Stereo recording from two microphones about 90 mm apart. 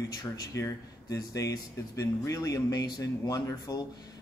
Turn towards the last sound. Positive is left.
turn(degrees=45)  # may be behind; listen again after turning